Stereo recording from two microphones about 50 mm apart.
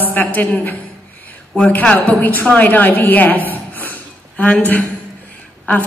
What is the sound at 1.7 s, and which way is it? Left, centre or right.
A woman's voice, left.